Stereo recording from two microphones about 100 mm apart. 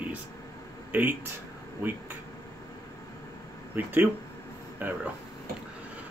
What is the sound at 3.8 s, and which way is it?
Speech, 20° right (ahead or behind).